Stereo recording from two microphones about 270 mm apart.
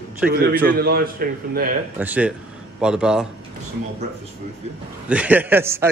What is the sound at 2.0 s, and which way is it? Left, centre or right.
A man's voice, centre.